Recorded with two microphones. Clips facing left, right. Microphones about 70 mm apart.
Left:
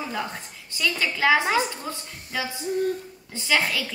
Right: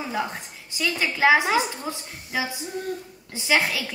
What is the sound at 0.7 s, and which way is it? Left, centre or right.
A woman's voice, centre.